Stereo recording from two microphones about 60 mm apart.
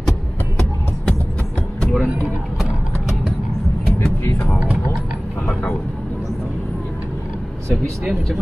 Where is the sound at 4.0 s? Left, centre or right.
Left.